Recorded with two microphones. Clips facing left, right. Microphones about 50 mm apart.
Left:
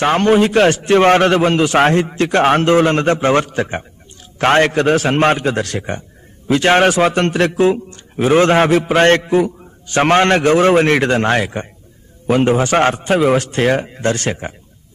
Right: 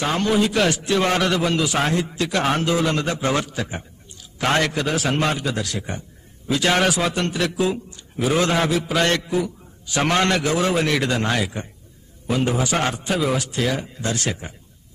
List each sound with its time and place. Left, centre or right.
0.0 s a man's voice: left